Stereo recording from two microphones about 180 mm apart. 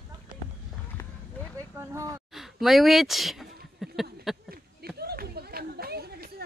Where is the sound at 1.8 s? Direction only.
15° right (ahead or behind).